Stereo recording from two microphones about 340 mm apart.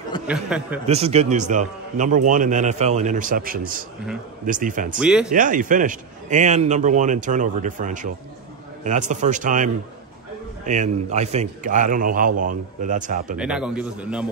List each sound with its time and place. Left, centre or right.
0.3 s a man's voice: centre
0.8 s a man's voice: centre
4.9 s a man's voice: centre
5.3 s a man's voice: right
13.4 s a man's voice: centre